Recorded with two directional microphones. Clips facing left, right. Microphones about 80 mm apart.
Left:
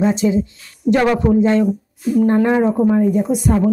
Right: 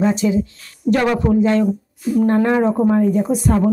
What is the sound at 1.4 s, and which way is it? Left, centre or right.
Speech, left.